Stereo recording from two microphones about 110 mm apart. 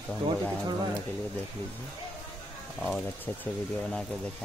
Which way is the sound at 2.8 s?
15° left (ahead or behind).